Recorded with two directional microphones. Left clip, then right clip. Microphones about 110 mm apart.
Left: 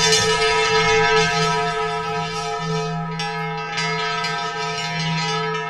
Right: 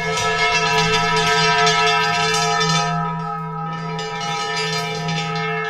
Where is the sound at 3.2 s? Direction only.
25° left (ahead or behind).